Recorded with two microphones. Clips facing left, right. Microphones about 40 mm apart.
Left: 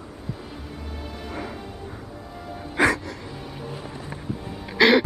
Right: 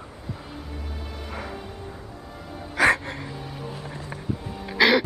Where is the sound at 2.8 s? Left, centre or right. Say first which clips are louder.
Right 1 dB; right.